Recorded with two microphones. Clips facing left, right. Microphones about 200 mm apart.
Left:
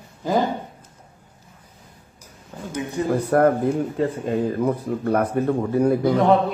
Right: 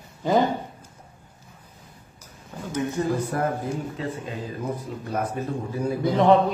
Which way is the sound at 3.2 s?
60° left (ahead or behind).